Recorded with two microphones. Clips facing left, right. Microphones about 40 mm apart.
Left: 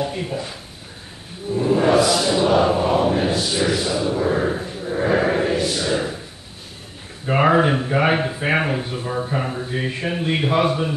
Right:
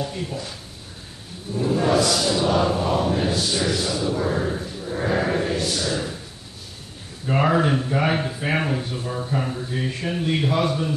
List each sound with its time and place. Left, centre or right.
0.0 s speech: left
1.5 s chant: centre
7.2 s speech: left